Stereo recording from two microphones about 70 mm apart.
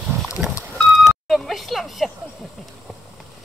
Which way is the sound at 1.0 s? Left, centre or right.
Centre.